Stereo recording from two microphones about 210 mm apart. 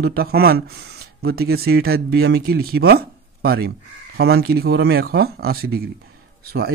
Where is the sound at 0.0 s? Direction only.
45° right (ahead or behind).